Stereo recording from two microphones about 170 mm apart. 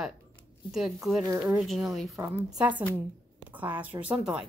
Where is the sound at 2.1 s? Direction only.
15° right (ahead or behind).